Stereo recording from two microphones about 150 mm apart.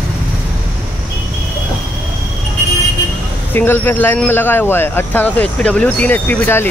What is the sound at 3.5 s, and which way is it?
Speech, 15° left (ahead or behind).